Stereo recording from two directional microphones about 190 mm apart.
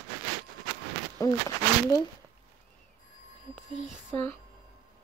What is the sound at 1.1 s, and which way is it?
Speech, 15° left (ahead or behind).